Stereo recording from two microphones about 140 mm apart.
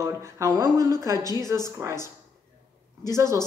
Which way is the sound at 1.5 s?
20° right (ahead or behind).